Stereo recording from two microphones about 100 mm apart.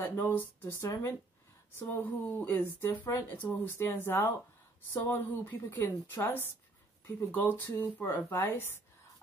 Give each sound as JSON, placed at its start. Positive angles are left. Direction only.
{"t": 0.0, "sound": "speech", "side_deg": 20}
{"t": 7.2, "sound": "speech", "side_deg": 20}